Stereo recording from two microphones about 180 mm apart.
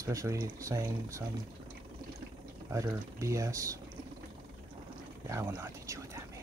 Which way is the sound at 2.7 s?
15° right (ahead or behind).